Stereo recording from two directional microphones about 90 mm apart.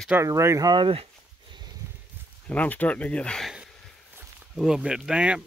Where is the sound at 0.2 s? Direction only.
30° right (ahead or behind).